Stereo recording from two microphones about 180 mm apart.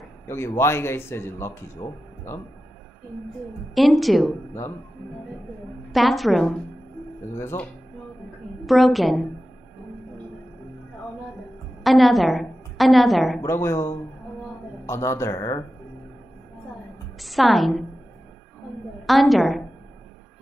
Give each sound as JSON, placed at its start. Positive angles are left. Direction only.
{"t": 0.3, "sound": "a man's voice", "side_deg": 15}
{"t": 3.7, "sound": "a woman's voice", "side_deg": 0}
{"t": 5.9, "sound": "a woman's voice", "side_deg": 0}
{"t": 7.3, "sound": "a man's voice", "side_deg": 15}
{"t": 8.6, "sound": "a woman's voice", "side_deg": 0}
{"t": 11.8, "sound": "a woman's voice", "side_deg": 0}
{"t": 13.4, "sound": "a man's voice", "side_deg": 15}
{"t": 17.2, "sound": "a woman's voice", "side_deg": 0}
{"t": 19.0, "sound": "a woman's voice", "side_deg": 0}